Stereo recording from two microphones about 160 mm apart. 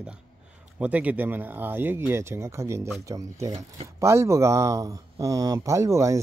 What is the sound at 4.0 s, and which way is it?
Speech, 15° right (ahead or behind).